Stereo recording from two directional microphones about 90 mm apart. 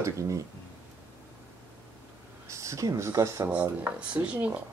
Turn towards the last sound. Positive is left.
turn(degrees=-15)  # may be behind; listen again after turning